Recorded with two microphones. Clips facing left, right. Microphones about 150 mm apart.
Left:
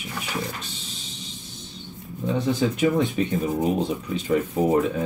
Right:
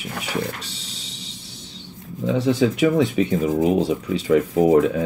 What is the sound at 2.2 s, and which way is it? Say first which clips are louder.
Speech: right 4 dB; 90° right.